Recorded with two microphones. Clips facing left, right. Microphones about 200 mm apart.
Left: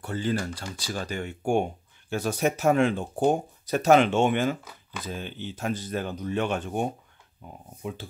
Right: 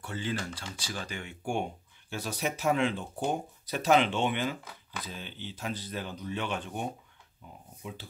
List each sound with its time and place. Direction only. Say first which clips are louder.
0.0 s speech: left 6 dB; 40° left (ahead or behind)